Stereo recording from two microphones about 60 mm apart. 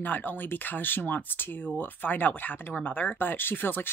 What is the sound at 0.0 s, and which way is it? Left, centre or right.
Speech, left.